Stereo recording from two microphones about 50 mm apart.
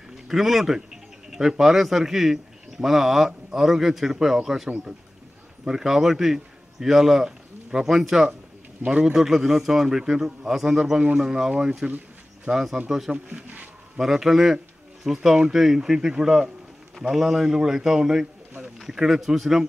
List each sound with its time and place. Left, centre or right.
0.3 s a man's voice: centre
5.7 s a man's voice: centre
12.5 s speech: right
13.9 s a man's voice: centre